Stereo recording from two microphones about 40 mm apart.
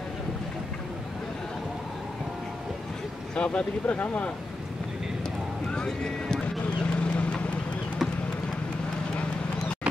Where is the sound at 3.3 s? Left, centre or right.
Left.